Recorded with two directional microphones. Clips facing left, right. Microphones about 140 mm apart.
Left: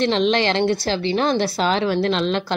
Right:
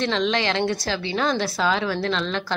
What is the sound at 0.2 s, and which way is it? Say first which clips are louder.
Speech: left 4 dB; 60° left (ahead or behind).